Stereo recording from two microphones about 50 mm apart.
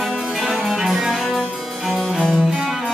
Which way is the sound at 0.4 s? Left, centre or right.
Centre.